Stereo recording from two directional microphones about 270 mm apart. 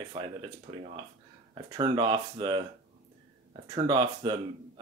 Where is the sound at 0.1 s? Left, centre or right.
Centre.